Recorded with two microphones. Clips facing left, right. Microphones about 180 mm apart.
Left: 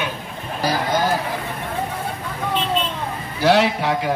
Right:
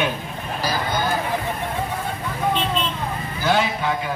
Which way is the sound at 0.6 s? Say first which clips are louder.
Left 4 dB; 90° left.